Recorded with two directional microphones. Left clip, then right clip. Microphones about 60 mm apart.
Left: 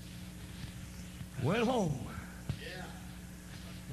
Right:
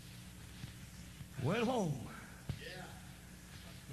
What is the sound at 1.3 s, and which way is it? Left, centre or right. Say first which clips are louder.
Music: left 4 dB; left.